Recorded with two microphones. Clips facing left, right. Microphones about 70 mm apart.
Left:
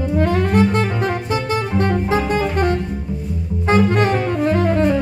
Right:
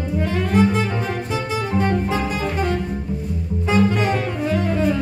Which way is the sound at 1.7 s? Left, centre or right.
Centre.